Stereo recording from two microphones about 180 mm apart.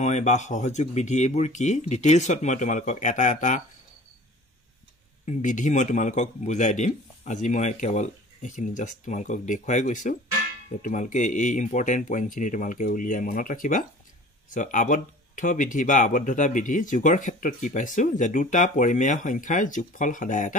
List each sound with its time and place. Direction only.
0.0 s speech: 40° left (ahead or behind)
5.2 s speech: 45° left (ahead or behind)